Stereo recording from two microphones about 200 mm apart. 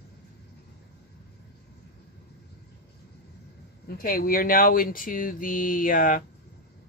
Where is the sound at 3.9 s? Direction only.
45° left (ahead or behind).